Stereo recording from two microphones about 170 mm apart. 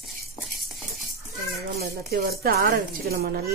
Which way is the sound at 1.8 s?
65° right (ahead or behind).